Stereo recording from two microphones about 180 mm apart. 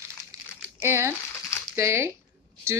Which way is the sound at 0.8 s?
15° right (ahead or behind).